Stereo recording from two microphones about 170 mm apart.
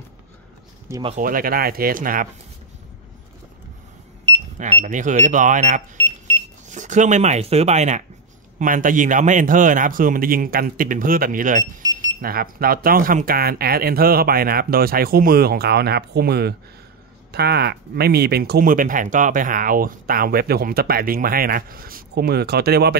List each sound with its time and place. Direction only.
0.9 s speech: 15° right (ahead or behind)
1.2 s speech: 55° right (ahead or behind)
4.6 s speech: 40° right (ahead or behind); by 22.9 s 70° right (ahead or behind)